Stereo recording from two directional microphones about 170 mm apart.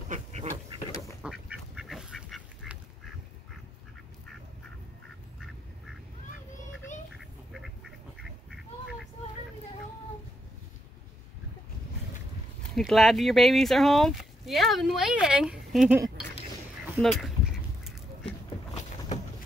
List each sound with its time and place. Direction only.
0.1 s duck: 40° right (ahead or behind)
1.2 s duck: 5° right (ahead or behind)
7.2 s duck: centre (ahead or behind)
12.7 s speech: centre (ahead or behind)
17.0 s duck: centre (ahead or behind)